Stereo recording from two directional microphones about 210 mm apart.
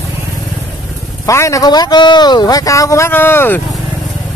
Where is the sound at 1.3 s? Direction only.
15° left (ahead or behind).